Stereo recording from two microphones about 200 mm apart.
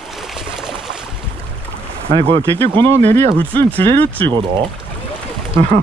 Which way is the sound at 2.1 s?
25° right (ahead or behind).